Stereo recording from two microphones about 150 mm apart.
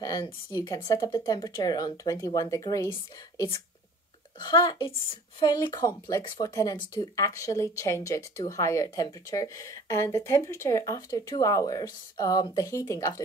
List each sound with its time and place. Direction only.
0.0 s speech: 25° left (ahead or behind)